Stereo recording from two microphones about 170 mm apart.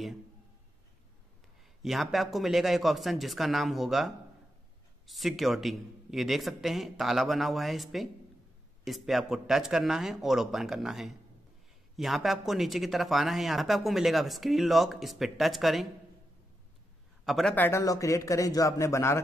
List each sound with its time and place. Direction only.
1.8 s speech: centre (ahead or behind)
17.2 s a man's voice: centre (ahead or behind)
17.6 s a man's voice: 20° left (ahead or behind)